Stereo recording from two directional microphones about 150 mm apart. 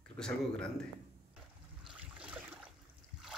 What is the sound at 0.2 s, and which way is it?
Speech, 5° left (ahead or behind).